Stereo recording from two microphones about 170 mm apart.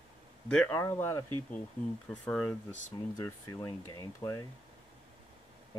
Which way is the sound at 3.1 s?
20° left (ahead or behind).